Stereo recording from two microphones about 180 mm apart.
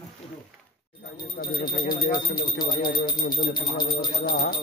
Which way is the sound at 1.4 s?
55° left (ahead or behind).